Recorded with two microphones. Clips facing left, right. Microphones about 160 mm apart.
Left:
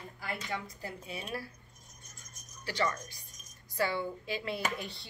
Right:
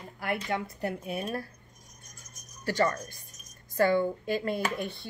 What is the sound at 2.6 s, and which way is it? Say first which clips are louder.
Speech: right 6 dB; 50° right (ahead or behind).